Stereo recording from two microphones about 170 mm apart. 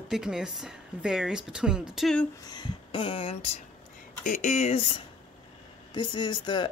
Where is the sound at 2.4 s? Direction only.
25° left (ahead or behind).